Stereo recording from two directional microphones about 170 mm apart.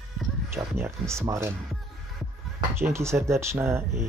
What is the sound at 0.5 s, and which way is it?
Speech, 15° right (ahead or behind).